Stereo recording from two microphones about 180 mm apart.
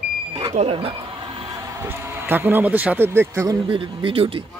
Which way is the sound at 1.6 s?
15° right (ahead or behind).